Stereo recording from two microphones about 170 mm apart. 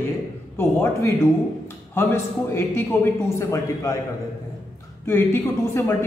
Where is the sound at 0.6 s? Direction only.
15° left (ahead or behind).